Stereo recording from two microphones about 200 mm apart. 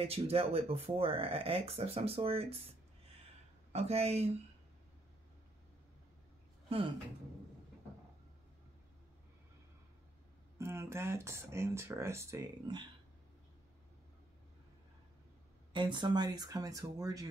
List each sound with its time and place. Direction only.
0.0 s speech: 30° right (ahead or behind)
3.7 s speech: 30° right (ahead or behind)
6.7 s speech: 30° right (ahead or behind)
10.6 s speech: 15° right (ahead or behind)
15.7 s speech: 20° right (ahead or behind)